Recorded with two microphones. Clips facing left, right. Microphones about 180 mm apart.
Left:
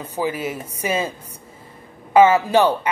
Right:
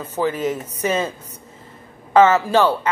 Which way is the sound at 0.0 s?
10° left (ahead or behind).